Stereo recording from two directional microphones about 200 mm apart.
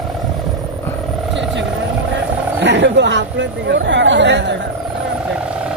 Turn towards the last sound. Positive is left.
turn(degrees=-60)  # may be behind; listen again after turning